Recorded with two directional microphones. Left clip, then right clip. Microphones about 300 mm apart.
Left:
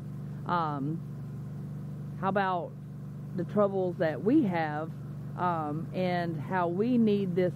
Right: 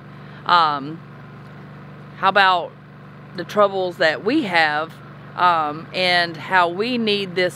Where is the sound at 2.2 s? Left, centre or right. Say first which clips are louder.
Right 14 dB; centre.